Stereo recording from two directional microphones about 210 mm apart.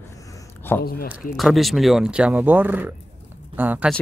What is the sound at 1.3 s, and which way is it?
Speech, centre (ahead or behind).